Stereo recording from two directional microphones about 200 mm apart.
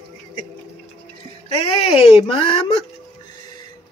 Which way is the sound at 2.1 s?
25° left (ahead or behind).